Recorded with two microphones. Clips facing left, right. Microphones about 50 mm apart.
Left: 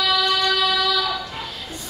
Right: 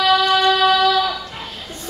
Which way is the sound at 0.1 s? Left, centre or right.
Right.